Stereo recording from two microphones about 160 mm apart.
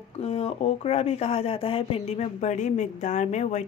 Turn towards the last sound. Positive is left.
turn(degrees=45)  # may be behind; listen again after turning